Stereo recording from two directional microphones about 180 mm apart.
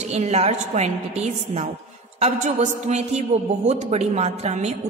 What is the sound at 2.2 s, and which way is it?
A woman's voice, 40° right (ahead or behind).